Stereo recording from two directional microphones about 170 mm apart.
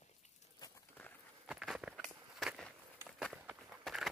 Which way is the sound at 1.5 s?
5° right (ahead or behind).